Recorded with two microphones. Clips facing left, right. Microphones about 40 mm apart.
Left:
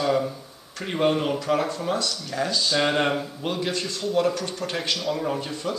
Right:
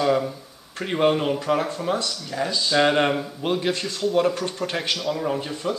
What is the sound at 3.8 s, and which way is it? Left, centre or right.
Speech, centre.